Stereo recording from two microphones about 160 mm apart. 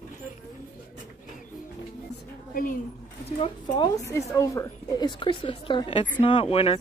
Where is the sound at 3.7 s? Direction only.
25° left (ahead or behind).